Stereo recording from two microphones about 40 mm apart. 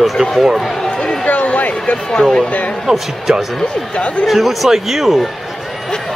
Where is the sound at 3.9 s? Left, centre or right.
Left.